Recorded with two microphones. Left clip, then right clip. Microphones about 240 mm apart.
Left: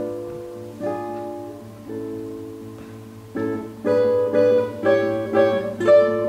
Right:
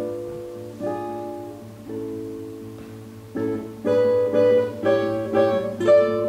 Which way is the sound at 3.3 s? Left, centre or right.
Centre.